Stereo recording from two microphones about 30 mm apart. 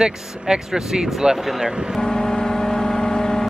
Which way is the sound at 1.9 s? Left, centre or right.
Left.